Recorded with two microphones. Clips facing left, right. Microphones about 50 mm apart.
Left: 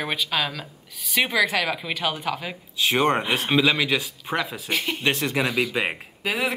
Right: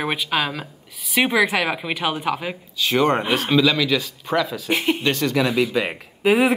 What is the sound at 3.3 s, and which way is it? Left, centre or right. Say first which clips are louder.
Speech: right 3 dB; centre.